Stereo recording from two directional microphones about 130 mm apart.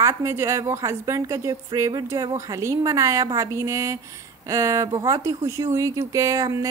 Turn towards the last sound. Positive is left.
turn(degrees=-25)  # may be behind; listen again after turning